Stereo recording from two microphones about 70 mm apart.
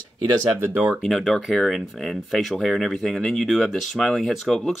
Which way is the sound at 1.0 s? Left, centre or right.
Centre.